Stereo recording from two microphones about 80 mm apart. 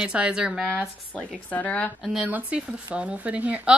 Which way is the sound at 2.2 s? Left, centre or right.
Centre.